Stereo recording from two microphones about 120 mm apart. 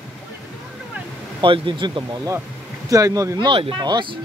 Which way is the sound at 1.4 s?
45° right (ahead or behind).